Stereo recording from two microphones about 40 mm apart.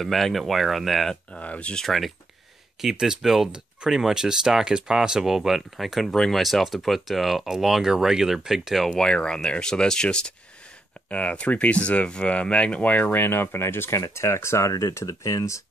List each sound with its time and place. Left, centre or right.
0.0 s speech: centre
1.4 s speech: left
1.9 s speech: centre
2.8 s speech: centre
3.5 s speech: centre
6.1 s speech: centre
6.4 s speech: centre
8.9 s speech: left
11.1 s speech: left
13.1 s speech: left